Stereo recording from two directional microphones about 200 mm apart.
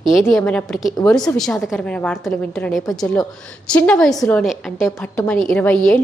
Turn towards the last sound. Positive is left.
turn(degrees=10)  # may be behind; listen again after turning